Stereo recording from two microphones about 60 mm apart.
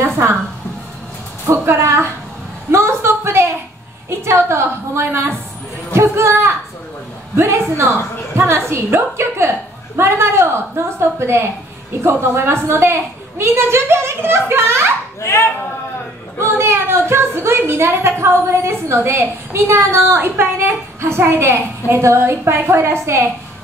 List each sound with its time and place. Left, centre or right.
1.5 s a woman's voice: right
2.7 s a sound: right
4.1 s a woman's voice: right
15.1 s speech: left
16.3 s a woman's voice: right